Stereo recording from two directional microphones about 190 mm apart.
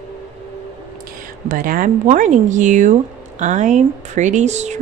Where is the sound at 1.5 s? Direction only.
45° right (ahead or behind).